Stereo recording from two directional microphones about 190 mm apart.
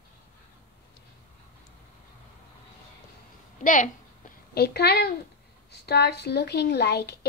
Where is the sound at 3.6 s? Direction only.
45° left (ahead or behind).